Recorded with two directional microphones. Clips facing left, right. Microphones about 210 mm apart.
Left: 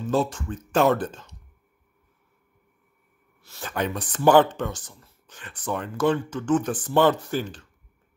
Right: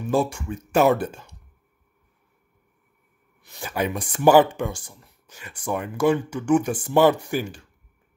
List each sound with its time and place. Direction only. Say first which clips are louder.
0.0 s speech: right 1 dB; 10° right (ahead or behind)
3.4 s speech: right 2 dB; 15° right (ahead or behind)